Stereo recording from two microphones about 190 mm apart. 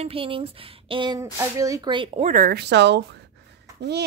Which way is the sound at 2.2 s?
45° right (ahead or behind).